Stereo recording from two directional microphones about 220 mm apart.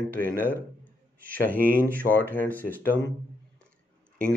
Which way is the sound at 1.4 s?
40° right (ahead or behind).